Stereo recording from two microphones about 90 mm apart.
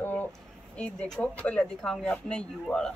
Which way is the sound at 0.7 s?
10° left (ahead or behind).